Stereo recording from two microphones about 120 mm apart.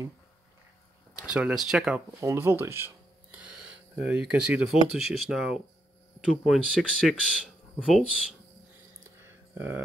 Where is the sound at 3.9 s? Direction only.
10° right (ahead or behind).